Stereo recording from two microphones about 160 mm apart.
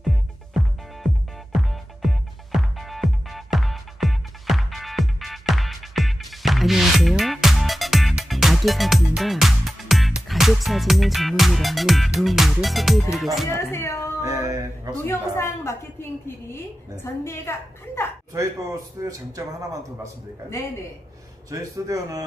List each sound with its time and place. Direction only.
0.0 s music: centre (ahead or behind)
13.5 s a woman's voice: 15° left (ahead or behind)
14.2 s a man's voice: 20° right (ahead or behind)
15.0 s a woman's voice: 15° left (ahead or behind)
18.3 s a man's voice: 20° right (ahead or behind)
21.5 s a man's voice: 20° right (ahead or behind)